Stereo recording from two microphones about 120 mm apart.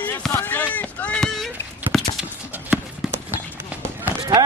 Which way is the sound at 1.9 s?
Centre (ahead or behind).